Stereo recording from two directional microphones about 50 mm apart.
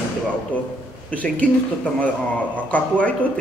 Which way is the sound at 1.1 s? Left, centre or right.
Left.